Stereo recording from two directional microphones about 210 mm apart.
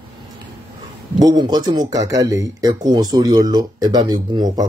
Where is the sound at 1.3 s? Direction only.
20° right (ahead or behind).